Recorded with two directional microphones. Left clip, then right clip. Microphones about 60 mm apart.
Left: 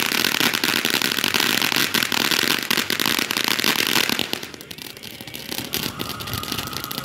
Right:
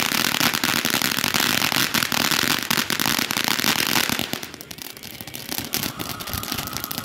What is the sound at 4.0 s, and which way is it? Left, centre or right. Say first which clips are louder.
Chainsaw: left 2 dB; right.